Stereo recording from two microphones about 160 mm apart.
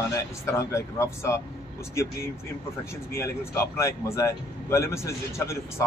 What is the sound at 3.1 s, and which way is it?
Speech, 15° left (ahead or behind).